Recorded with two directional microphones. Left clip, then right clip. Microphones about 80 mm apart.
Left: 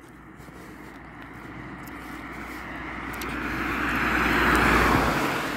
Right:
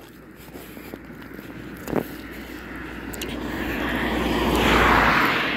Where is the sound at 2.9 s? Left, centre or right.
Left.